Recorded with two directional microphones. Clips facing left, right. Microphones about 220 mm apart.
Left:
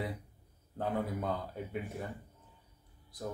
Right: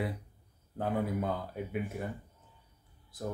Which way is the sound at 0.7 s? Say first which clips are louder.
Right 3 dB; 5° right (ahead or behind).